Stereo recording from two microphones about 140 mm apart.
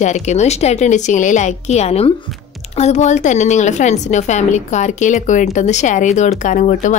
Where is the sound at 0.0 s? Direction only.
55° left (ahead or behind).